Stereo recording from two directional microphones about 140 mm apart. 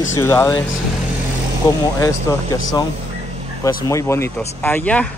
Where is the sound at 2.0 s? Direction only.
25° left (ahead or behind).